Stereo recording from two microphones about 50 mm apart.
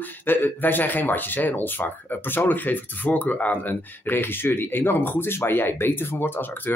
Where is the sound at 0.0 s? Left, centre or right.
Left.